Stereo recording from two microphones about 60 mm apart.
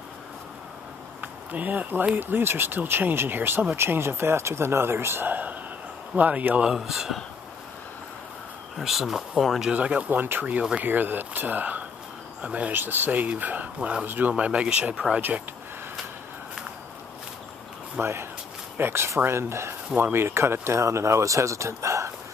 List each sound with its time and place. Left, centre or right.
1.2 s a man's voice: right
6.7 s speech: centre
8.7 s speech: centre
9.7 s speech: centre
10.1 s speech: right
12.7 s speech: right
13.7 s speech: centre
14.0 s speech: right
18.0 s a man's voice: right